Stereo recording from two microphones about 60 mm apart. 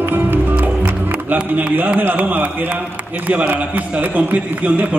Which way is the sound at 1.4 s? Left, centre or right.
Centre.